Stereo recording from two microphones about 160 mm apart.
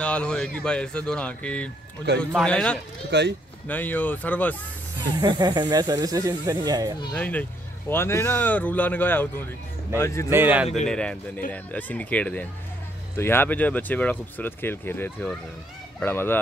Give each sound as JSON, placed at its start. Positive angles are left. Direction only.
{"t": 0.0, "sound": "speech", "side_deg": 5}
{"t": 3.1, "sound": "speech", "side_deg": -90}
{"t": 3.6, "sound": "speech", "side_deg": 10}
{"t": 5.2, "sound": "speech", "side_deg": -25}
{"t": 7.2, "sound": "speech", "side_deg": 10}
{"t": 10.3, "sound": "a man's voice", "side_deg": -10}
{"t": 10.9, "sound": "speech", "side_deg": 5}